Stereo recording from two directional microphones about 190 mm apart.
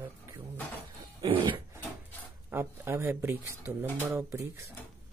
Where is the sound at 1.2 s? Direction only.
30° right (ahead or behind).